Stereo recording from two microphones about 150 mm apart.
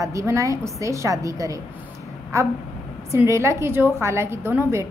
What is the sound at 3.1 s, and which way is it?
A woman's voice, 20° right (ahead or behind).